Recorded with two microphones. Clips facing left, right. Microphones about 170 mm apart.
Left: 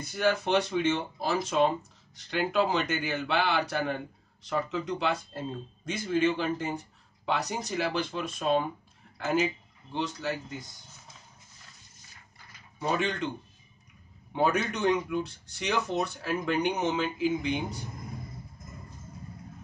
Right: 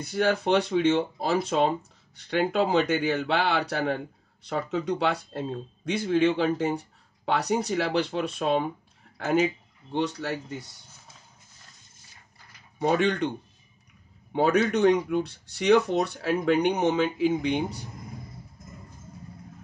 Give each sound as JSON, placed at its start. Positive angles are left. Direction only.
{"t": 0.0, "sound": "speech", "side_deg": -60}
{"t": 9.8, "sound": "speech", "side_deg": -65}
{"t": 12.8, "sound": "speech", "side_deg": -65}
{"t": 14.3, "sound": "speech", "side_deg": -65}